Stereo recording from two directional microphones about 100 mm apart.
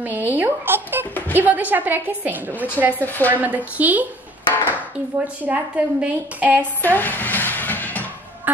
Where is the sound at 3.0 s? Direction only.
20° left (ahead or behind).